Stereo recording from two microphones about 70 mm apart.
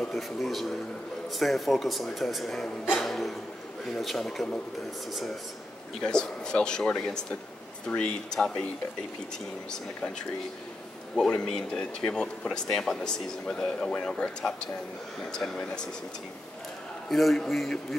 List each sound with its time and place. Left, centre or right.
0.1 s speech: centre
11.1 s speech: centre
17.1 s speech: centre